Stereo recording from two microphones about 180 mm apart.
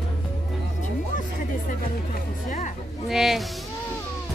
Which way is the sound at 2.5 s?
45° left (ahead or behind).